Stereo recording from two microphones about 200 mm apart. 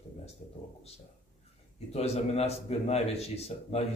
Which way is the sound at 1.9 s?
30° left (ahead or behind).